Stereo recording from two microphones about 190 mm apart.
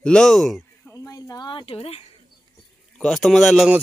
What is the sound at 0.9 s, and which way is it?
Speech, 15° left (ahead or behind).